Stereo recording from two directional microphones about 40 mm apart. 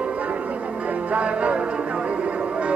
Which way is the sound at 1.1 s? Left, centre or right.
Right.